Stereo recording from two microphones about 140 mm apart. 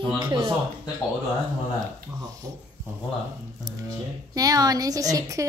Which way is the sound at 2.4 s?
30° right (ahead or behind).